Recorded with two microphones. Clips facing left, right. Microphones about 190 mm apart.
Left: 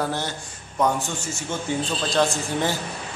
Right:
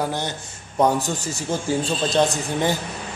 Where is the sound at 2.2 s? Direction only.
20° right (ahead or behind).